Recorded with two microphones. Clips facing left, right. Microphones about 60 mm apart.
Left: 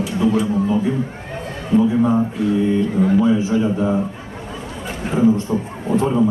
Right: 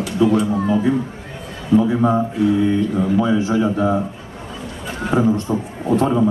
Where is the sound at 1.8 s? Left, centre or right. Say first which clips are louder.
Left 2 dB; right.